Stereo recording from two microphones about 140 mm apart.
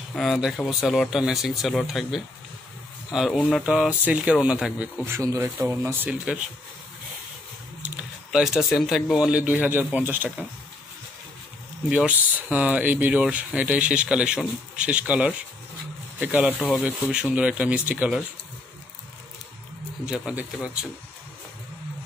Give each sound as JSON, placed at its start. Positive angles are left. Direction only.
{"t": 0.1, "sound": "speech", "side_deg": 0}
{"t": 5.0, "sound": "speech", "side_deg": -20}
{"t": 7.8, "sound": "speech", "side_deg": -5}
{"t": 11.9, "sound": "speech", "side_deg": -10}
{"t": 20.1, "sound": "speech", "side_deg": -5}